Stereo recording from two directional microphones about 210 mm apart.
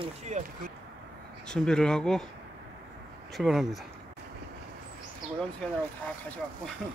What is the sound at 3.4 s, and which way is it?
Speech, centre (ahead or behind).